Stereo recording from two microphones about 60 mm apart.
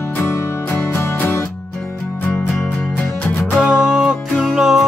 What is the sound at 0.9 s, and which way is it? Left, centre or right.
Music, left.